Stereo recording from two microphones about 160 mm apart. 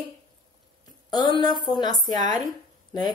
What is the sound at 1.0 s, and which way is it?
A woman's voice, 25° left (ahead or behind).